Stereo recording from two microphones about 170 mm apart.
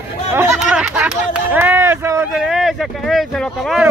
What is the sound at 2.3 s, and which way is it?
Speech, centre (ahead or behind).